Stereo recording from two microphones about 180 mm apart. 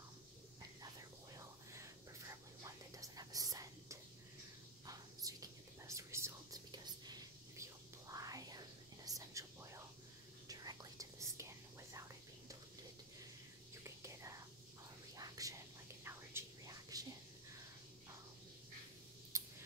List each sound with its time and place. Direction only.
2.6 s whispering: 20° right (ahead or behind)
13.8 s whispering: 15° right (ahead or behind)
19.3 s scissors: 15° right (ahead or behind)